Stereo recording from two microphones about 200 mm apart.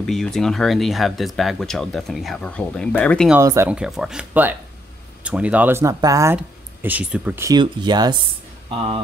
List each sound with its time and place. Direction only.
0.0 s speech: centre (ahead or behind)
3.3 s speech: 15° right (ahead or behind)